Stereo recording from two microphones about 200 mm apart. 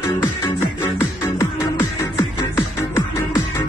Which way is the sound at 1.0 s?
15° left (ahead or behind).